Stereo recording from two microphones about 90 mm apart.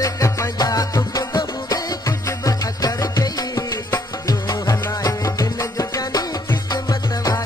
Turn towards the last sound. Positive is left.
turn(degrees=40)  # may be behind; listen again after turning